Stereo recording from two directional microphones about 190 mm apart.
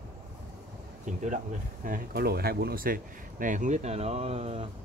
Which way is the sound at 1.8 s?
50° right (ahead or behind).